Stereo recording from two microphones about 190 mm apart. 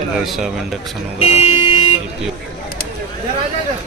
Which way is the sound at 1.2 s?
30° left (ahead or behind).